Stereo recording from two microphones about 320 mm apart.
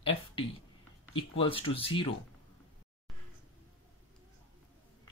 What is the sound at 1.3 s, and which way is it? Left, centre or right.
Speech, centre.